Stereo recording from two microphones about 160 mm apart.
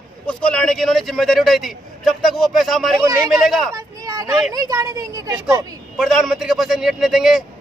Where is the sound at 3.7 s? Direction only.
20° right (ahead or behind).